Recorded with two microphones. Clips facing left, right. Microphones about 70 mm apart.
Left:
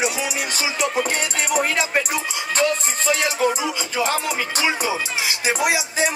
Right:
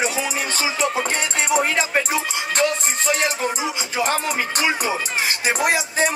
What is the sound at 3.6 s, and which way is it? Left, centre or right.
Speech, right.